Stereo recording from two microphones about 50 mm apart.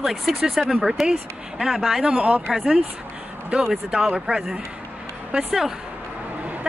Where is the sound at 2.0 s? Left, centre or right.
Right.